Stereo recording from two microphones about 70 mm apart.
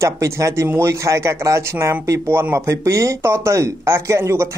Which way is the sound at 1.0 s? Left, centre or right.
Right.